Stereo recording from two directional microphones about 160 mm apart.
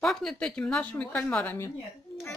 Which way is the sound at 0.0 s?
5° left (ahead or behind).